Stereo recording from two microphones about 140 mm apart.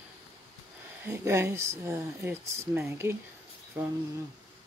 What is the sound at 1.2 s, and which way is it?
Speech, 20° right (ahead or behind).